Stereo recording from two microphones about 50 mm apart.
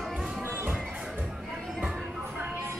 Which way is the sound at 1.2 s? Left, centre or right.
Centre.